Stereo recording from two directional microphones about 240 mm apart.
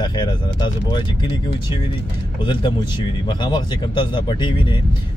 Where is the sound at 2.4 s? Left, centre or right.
Centre.